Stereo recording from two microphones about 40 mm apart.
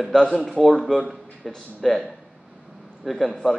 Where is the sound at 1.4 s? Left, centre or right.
Centre.